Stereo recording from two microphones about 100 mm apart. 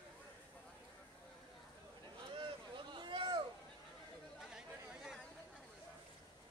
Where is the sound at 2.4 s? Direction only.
50° right (ahead or behind).